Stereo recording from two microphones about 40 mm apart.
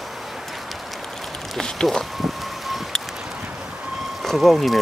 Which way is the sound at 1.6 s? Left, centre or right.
Centre.